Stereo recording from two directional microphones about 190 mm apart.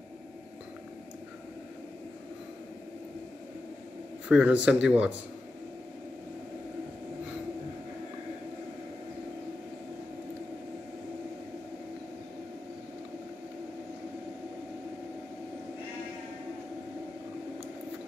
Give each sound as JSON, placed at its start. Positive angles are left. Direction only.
{"t": 4.3, "sound": "speech", "side_deg": -5}